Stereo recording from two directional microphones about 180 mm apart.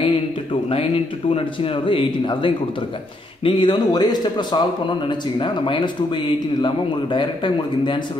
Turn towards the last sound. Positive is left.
turn(degrees=25)  # may be behind; listen again after turning